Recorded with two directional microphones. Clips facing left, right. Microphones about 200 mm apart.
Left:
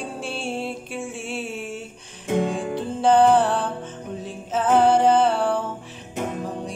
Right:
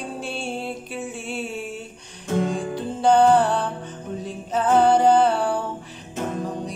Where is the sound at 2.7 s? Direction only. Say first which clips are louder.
Even; centre (ahead or behind).